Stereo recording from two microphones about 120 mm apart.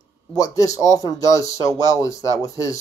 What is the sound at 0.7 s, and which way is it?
Speech, 30° left (ahead or behind).